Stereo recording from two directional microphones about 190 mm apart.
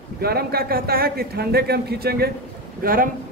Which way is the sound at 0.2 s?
55° right (ahead or behind).